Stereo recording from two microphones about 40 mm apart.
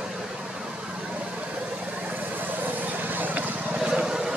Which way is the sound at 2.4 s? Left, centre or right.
Right.